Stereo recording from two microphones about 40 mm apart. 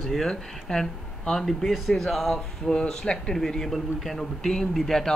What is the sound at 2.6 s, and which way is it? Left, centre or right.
Speech, left.